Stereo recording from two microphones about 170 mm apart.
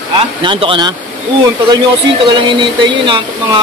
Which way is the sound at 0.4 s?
30° right (ahead or behind).